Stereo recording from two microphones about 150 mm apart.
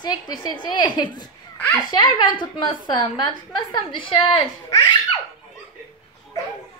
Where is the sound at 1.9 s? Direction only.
30° left (ahead or behind).